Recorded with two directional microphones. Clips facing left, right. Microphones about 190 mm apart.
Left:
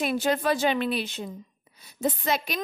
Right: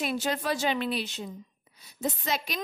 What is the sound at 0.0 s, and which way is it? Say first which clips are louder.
Speech: left 5 dB; 55° left (ahead or behind).